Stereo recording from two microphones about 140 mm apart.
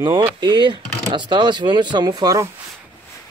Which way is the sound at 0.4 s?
35° right (ahead or behind).